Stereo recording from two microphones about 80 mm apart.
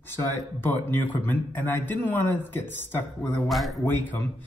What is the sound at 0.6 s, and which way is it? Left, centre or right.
A man's voice, left.